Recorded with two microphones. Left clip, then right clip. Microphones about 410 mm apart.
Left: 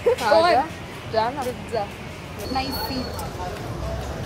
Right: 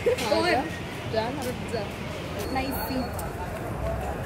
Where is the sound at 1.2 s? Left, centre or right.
Centre.